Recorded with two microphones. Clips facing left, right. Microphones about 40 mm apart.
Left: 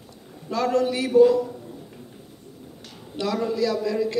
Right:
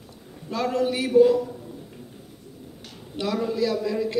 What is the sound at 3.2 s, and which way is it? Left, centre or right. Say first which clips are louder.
Speech: left 1 dB; centre.